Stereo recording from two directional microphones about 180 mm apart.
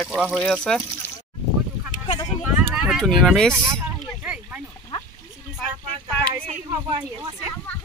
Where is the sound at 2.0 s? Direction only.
20° left (ahead or behind).